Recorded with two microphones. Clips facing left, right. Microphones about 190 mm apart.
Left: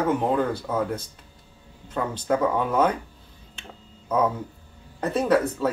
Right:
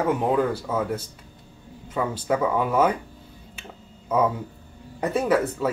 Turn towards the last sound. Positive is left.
turn(degrees=-5)  # may be behind; listen again after turning